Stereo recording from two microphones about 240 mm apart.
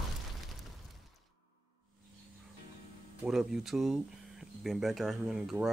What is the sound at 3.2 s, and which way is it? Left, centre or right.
Speech, centre.